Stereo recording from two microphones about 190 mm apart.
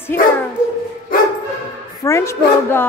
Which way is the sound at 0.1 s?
10° left (ahead or behind).